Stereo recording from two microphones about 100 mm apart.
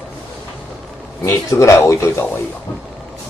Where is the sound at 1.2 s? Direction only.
30° left (ahead or behind).